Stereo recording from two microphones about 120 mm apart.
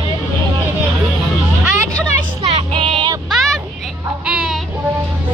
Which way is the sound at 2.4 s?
60° right (ahead or behind).